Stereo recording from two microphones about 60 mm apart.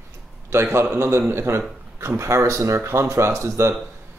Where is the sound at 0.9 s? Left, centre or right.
Right.